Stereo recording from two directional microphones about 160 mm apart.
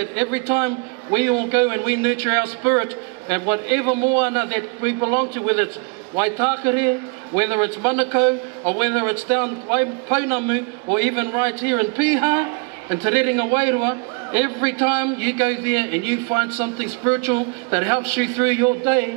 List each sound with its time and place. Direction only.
0.0 s a man's voice: 10° right (ahead or behind)